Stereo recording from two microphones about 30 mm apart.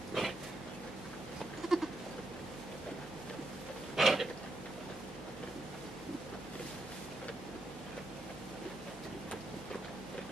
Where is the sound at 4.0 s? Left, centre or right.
Centre.